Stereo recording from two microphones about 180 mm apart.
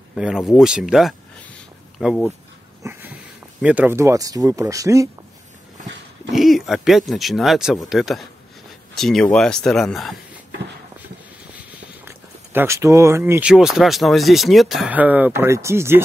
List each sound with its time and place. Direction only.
0.1 s speech: centre (ahead or behind)
2.8 s a sound: 10° right (ahead or behind)
3.6 s speech: 10° right (ahead or behind)
6.3 s speech: centre (ahead or behind)
12.5 s speech: 15° right (ahead or behind)